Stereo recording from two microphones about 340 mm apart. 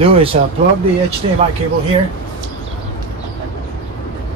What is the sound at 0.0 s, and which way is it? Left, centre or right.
Speech, centre.